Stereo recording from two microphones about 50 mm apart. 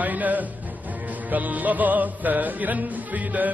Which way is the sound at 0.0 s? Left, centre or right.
Right.